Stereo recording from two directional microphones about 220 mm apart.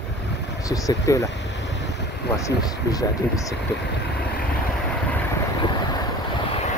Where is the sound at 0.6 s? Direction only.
15° left (ahead or behind).